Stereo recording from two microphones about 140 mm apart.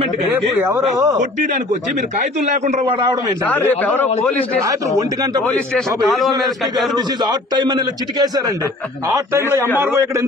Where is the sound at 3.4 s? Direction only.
10° left (ahead or behind).